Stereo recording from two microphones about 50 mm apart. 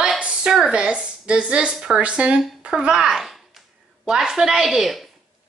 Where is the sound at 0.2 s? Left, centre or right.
Right.